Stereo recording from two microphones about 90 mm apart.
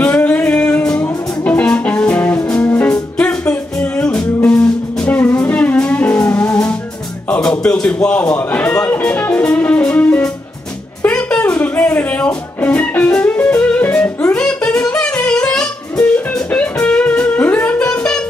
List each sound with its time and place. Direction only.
0.0 s music: 15° left (ahead or behind)
14.3 s music: 10° left (ahead or behind)